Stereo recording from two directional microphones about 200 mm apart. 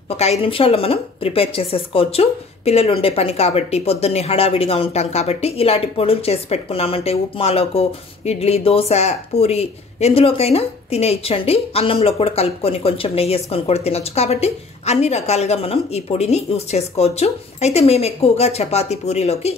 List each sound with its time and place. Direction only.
0.2 s a woman's voice: 30° left (ahead or behind)